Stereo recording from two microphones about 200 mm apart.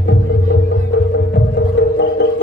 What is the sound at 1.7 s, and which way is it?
Music, 60° left (ahead or behind).